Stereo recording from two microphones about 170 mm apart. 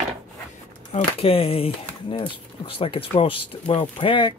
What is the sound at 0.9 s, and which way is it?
Speech, 35° left (ahead or behind).